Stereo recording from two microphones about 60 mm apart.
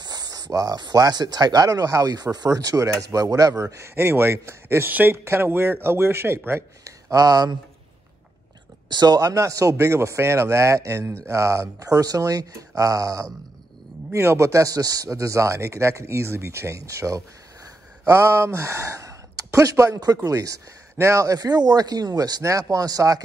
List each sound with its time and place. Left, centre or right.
0.3 s speech: right
3.6 s speech: right
4.8 s a man's voice: right
6.8 s speech: right
9.1 s speech: right
14.1 s speech: right